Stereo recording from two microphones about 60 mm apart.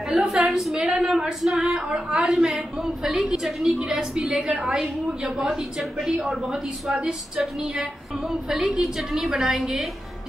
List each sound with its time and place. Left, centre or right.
0.2 s a woman's voice: centre
0.5 s singing: centre
0.7 s a woman's voice: centre
1.0 s singing: centre
1.6 s a woman's voice: centre
2.3 s a woman's voice: centre